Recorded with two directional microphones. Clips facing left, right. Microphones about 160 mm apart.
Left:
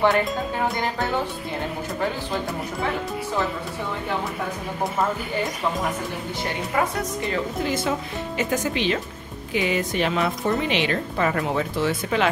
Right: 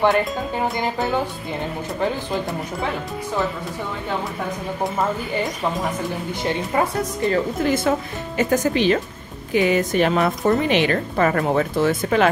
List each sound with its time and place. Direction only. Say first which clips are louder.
7.2 s a woman's voice: right 7 dB; 50° right (ahead or behind)